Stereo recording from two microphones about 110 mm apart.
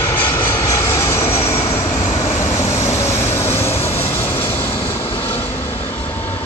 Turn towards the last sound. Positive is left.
turn(degrees=20)  # may be behind; listen again after turning